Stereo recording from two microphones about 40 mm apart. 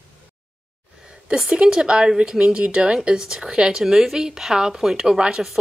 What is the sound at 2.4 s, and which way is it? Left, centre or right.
A woman's voice, right.